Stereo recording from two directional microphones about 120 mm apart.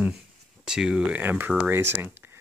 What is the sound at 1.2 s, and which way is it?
Speech, 15° right (ahead or behind).